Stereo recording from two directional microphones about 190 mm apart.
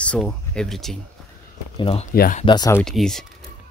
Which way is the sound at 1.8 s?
30° left (ahead or behind).